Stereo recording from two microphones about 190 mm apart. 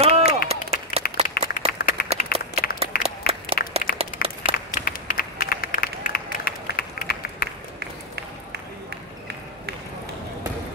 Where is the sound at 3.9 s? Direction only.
50° left (ahead or behind).